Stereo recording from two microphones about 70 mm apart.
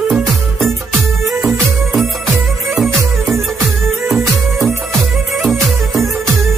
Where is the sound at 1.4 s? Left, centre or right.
Right.